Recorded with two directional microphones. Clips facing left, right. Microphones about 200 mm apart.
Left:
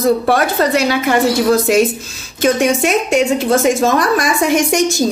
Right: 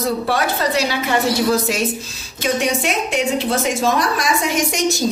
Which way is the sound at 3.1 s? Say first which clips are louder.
Left 5 dB; 45° left (ahead or behind).